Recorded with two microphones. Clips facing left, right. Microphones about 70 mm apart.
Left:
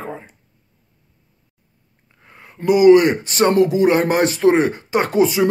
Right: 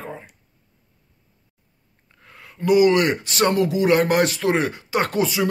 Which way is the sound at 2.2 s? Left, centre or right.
Left.